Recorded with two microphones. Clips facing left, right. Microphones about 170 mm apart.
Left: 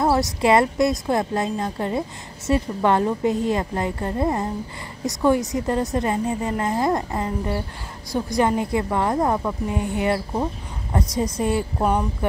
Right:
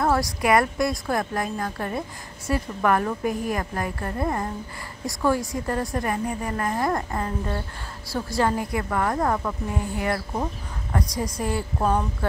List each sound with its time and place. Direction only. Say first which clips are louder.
0.0 s a woman's voice: left 3 dB; 20° left (ahead or behind)